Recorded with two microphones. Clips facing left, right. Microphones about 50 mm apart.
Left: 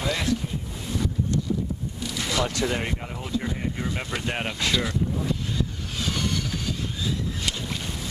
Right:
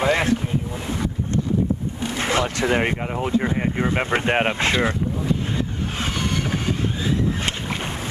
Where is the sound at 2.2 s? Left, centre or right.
Right.